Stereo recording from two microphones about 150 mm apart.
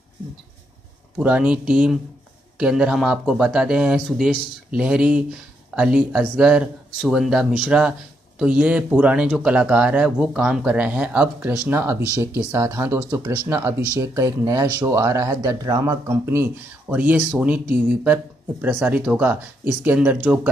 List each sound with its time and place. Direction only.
1.1 s speech: 10° right (ahead or behind)